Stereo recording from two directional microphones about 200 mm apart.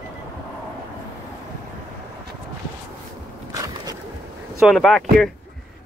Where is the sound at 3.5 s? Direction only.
15° right (ahead or behind).